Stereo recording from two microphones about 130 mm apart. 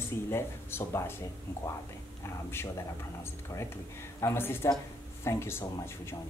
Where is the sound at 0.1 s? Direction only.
20° left (ahead or behind).